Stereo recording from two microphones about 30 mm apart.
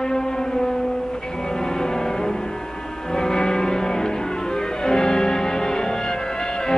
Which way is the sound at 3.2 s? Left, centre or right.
Left.